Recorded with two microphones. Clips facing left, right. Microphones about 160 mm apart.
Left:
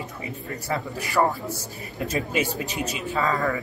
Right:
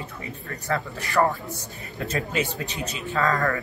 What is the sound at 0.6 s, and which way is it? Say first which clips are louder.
A man's voice: right 1 dB; 10° left (ahead or behind).